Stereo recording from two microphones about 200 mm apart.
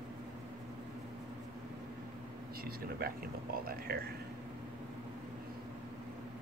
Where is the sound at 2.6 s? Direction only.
50° right (ahead or behind).